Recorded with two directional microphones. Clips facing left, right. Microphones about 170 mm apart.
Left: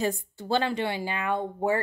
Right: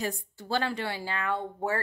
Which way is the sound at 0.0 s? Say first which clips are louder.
Left 5 dB; 25° left (ahead or behind).